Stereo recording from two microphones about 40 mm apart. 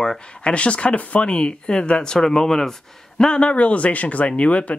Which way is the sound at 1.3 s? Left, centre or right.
Centre.